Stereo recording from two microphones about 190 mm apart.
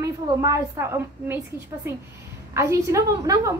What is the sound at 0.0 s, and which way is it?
A woman's voice, 15° right (ahead or behind).